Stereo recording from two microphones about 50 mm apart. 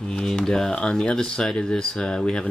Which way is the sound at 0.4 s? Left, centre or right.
Centre.